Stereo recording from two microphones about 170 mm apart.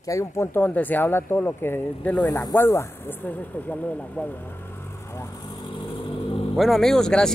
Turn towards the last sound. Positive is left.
turn(degrees=5)  # may be behind; listen again after turning